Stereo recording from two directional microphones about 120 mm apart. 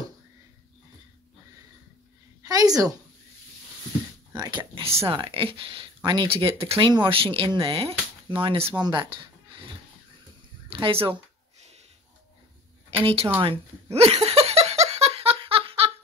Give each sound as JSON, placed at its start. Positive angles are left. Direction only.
{"t": 2.4, "sound": "a sound", "side_deg": -30}
{"t": 4.3, "sound": "speech", "side_deg": -35}
{"t": 10.8, "sound": "speech", "side_deg": -45}
{"t": 13.0, "sound": "speech", "side_deg": -55}
{"t": 13.4, "sound": "giggle", "side_deg": -55}